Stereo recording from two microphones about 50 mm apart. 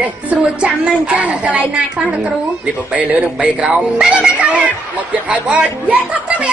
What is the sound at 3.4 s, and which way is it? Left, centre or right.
Speech, centre.